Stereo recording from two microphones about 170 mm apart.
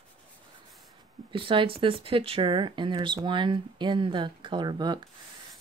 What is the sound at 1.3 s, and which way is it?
Speech, 30° right (ahead or behind).